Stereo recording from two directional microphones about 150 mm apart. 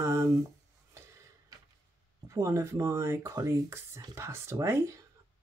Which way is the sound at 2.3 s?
20° right (ahead or behind).